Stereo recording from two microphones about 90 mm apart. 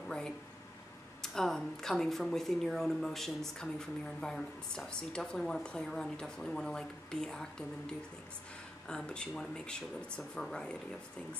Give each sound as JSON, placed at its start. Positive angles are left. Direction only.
{"t": 1.2, "sound": "a woman's voice", "side_deg": 5}